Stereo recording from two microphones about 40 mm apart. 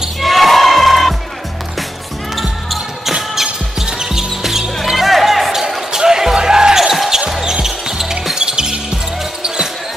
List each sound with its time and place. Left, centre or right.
0.2 s a sound: centre
2.7 s music: centre
4.8 s basketball bounce: centre
7.2 s music: centre